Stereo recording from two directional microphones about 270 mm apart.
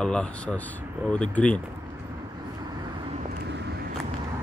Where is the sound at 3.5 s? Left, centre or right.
Right.